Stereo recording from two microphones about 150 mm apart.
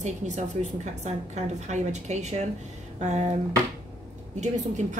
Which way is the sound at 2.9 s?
50° right (ahead or behind).